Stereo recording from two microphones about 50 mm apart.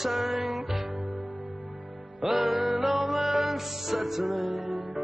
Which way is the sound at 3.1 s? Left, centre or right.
Centre.